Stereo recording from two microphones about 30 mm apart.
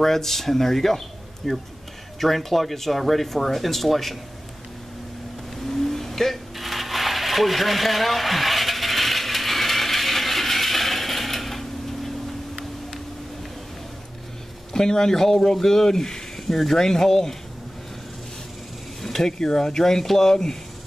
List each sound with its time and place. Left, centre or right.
0.0 s speech: centre
5.7 s vehicle: centre
6.5 s a sound: centre
14.7 s speech: centre
19.0 s speech: centre